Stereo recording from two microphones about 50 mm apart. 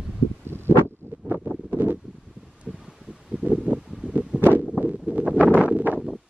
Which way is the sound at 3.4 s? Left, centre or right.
Right.